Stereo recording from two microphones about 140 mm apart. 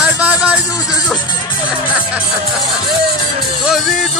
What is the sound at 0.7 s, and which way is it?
Speech, 25° left (ahead or behind).